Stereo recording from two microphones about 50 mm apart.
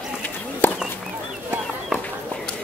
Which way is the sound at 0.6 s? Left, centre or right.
Left.